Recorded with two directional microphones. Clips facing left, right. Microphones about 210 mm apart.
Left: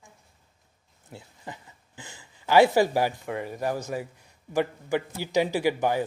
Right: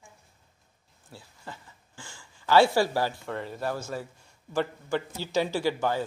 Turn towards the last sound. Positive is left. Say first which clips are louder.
# left 3 dB
turn(degrees=15)  # may be behind; listen again after turning